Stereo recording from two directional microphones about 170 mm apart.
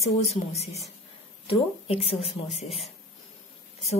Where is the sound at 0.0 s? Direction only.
40° left (ahead or behind).